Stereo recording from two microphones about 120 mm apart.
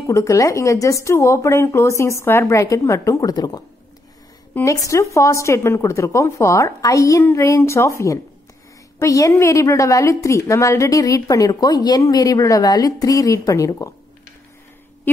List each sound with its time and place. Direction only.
0.0 s a woman's voice: 25° left (ahead or behind)